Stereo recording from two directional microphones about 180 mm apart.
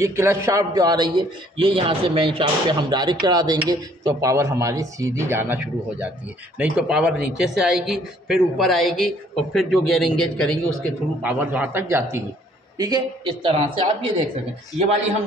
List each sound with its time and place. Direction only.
0.0 s a man's voice: 15° right (ahead or behind); by 15.1 s 40° right (ahead or behind)